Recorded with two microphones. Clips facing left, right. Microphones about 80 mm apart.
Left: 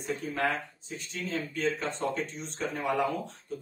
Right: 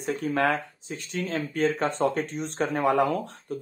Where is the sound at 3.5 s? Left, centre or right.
Right.